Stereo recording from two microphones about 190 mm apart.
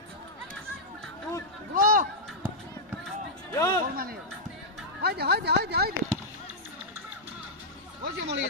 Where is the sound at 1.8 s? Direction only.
50° right (ahead or behind).